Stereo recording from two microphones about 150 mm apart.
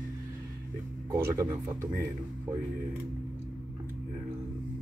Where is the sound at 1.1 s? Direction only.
20° right (ahead or behind).